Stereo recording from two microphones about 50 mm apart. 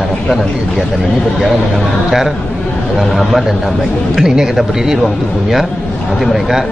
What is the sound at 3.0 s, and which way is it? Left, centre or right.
A man's voice, centre.